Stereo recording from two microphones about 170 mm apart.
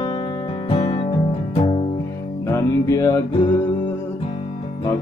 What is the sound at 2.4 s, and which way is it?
Music, 15° left (ahead or behind).